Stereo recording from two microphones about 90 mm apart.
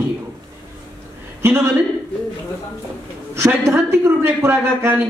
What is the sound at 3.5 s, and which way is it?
A man's voice, 25° right (ahead or behind).